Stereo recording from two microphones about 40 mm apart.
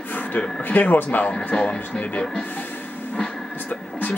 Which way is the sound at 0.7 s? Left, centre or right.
Left.